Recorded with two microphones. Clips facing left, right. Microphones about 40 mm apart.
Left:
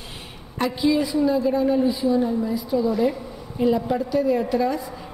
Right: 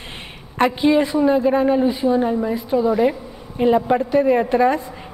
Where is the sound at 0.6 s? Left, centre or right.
Right.